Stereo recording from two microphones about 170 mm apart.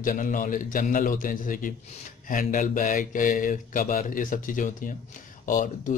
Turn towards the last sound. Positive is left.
turn(degrees=50)  # may be behind; listen again after turning